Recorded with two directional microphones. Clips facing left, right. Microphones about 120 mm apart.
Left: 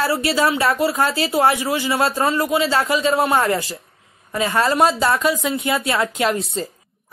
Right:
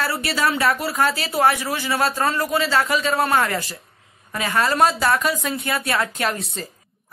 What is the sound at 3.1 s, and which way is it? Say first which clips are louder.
Speech: even; 15° left (ahead or behind).